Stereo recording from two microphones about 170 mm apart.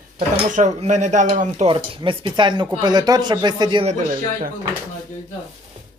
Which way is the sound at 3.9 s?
50° right (ahead or behind).